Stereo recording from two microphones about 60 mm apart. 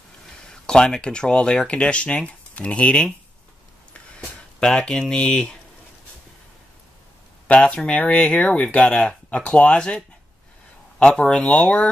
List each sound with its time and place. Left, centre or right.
0.5 s speech: centre
4.6 s speech: centre
7.4 s speech: centre